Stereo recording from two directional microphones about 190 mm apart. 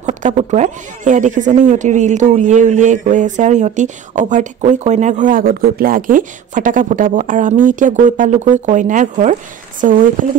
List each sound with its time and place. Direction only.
0.0 s speech: 40° right (ahead or behind)